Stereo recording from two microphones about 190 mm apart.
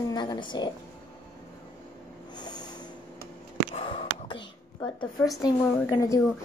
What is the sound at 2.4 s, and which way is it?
Snort, 20° left (ahead or behind).